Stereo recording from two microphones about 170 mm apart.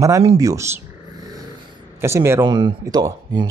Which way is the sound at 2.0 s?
15° right (ahead or behind).